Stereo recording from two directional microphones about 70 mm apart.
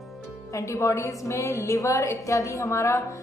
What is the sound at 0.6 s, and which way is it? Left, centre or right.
A woman's voice, left.